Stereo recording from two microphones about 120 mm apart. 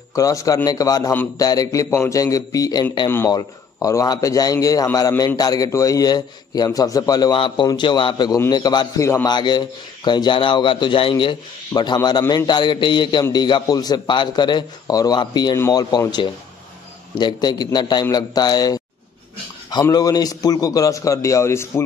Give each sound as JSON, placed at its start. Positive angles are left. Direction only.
{"t": 0.1, "sound": "a man's voice", "side_deg": 30}
{"t": 9.3, "sound": "a man's voice", "side_deg": 40}
{"t": 19.8, "sound": "a man's voice", "side_deg": 30}